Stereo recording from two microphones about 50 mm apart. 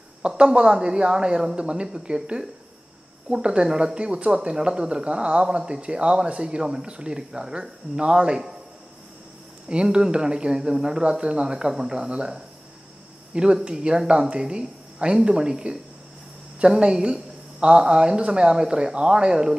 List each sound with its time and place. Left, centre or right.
0.4 s speech: centre
9.7 s speech: centre